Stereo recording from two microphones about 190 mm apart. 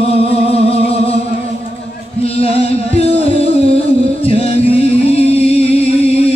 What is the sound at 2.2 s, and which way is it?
Music, 30° left (ahead or behind).